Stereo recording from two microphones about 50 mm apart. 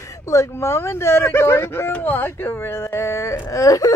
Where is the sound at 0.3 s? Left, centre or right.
Left.